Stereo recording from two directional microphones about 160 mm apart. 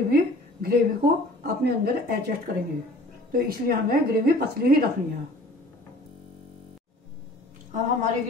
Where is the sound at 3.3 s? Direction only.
65° right (ahead or behind).